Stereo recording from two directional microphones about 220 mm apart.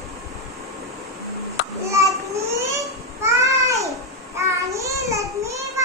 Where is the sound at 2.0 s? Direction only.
15° right (ahead or behind).